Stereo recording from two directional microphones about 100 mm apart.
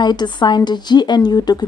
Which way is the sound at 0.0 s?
45° left (ahead or behind).